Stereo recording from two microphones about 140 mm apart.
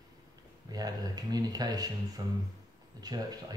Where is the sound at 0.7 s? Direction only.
30° right (ahead or behind).